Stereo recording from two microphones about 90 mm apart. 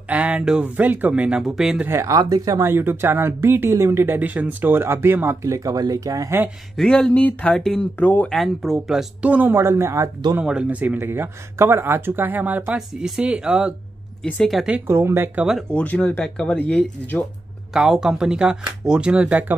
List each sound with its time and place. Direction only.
0.1 s speech: 15° right (ahead or behind)
1.4 s speech: 5° right (ahead or behind)
2.0 s speech: 45° right (ahead or behind)
2.7 s speech: 25° right (ahead or behind)
6.8 s speech: 10° left (ahead or behind)
8.3 s speech: centre (ahead or behind)
9.3 s speech: 20° right (ahead or behind)
10.4 s speech: 10° right (ahead or behind)
12.7 s speech: 5° right (ahead or behind)
14.9 s speech: 30° right (ahead or behind)
15.7 s speech: 15° left (ahead or behind)
17.7 s speech: 5° right (ahead or behind)